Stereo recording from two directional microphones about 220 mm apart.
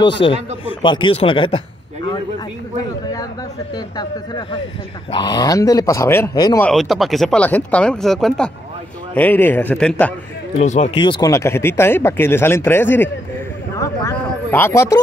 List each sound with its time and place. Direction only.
0.2 s speech: 25° left (ahead or behind)
3.7 s speech: 20° left (ahead or behind)
6.6 s speech: centre (ahead or behind)
10.6 s speech: 30° left (ahead or behind); by 15.0 s 15° left (ahead or behind)